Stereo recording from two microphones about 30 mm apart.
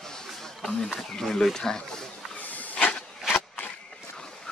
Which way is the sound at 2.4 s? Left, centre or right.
Left.